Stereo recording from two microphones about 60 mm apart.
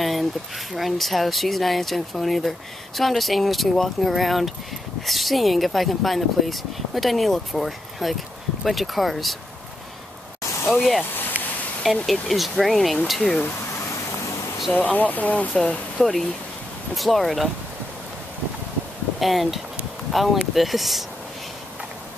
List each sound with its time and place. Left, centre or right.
0.0 s a sound: centre
0.7 s speech: centre
10.7 s speech: centre
14.9 s speech: left
16.0 s speech: centre
19.1 s speech: centre